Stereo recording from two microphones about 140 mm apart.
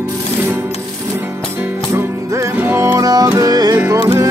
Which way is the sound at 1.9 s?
20° right (ahead or behind).